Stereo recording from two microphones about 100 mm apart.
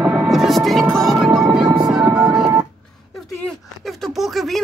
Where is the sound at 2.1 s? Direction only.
10° right (ahead or behind).